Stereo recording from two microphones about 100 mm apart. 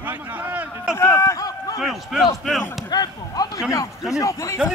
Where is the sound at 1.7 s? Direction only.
Centre (ahead or behind).